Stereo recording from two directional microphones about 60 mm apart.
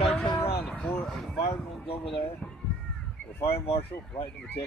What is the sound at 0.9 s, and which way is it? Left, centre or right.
Speech, left.